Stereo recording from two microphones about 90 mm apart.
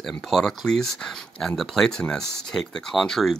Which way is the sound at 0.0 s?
5° left (ahead or behind).